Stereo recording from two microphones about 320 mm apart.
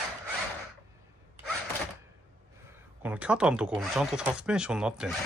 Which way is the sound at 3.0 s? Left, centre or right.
Centre.